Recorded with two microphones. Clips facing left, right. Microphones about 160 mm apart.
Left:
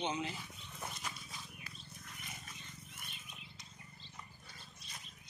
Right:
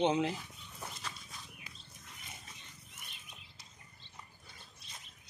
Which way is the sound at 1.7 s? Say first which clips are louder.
Left 1 dB; 20° right (ahead or behind).